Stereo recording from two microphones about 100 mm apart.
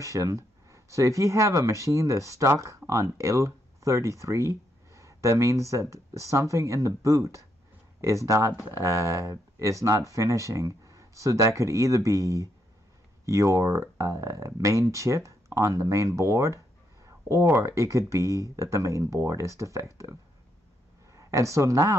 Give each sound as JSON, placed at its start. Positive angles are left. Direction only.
{"t": 0.0, "sound": "speech", "side_deg": -30}